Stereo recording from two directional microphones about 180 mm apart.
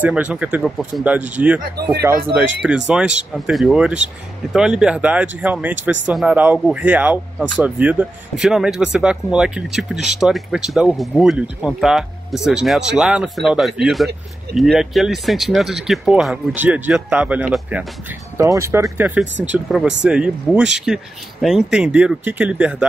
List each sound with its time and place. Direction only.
0.0 s speech: 5° right (ahead or behind)